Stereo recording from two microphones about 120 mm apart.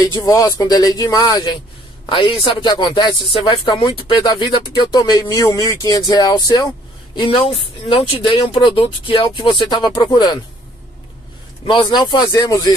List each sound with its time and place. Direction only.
0.2 s speech: 30° left (ahead or behind)
7.2 s speech: 50° left (ahead or behind)
11.6 s speech: 40° left (ahead or behind)